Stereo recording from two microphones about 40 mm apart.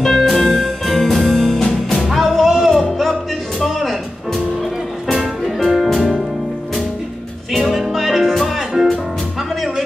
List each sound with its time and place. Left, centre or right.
0.0 s music: centre
2.0 s music: centre
5.1 s music: centre
7.9 s music: centre